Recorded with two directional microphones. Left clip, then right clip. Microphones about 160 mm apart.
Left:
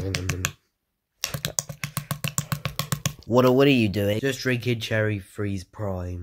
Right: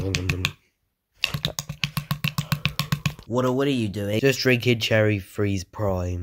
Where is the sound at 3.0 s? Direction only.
10° left (ahead or behind).